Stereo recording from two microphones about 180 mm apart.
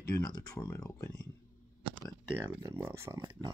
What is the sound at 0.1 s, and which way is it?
Speech, 20° left (ahead or behind).